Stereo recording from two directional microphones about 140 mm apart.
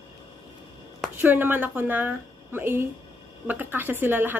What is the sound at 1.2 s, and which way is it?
A woman's voice, 15° right (ahead or behind).